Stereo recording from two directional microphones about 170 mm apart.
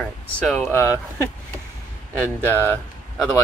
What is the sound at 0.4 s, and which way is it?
Speech, centre (ahead or behind).